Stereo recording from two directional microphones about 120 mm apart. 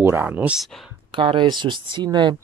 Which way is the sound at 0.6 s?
Centre (ahead or behind).